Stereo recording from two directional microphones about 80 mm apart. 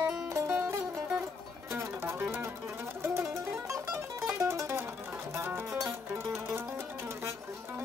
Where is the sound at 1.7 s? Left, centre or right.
Right.